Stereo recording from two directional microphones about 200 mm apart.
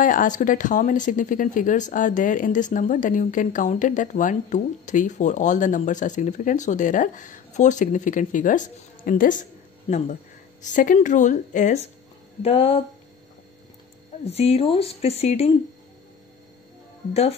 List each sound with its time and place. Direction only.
0.0 s speech: 40° left (ahead or behind)
14.2 s speech: 30° left (ahead or behind)